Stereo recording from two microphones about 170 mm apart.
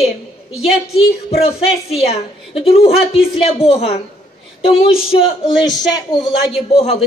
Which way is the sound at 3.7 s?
35° left (ahead or behind).